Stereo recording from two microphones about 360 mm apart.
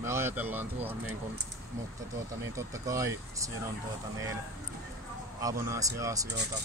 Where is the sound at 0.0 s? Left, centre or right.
Centre.